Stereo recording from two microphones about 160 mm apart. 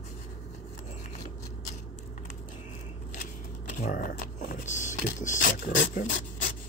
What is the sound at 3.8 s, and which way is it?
Speech, 60° left (ahead or behind).